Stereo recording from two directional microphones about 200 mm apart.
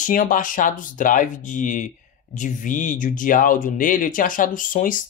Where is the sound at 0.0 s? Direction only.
40° left (ahead or behind).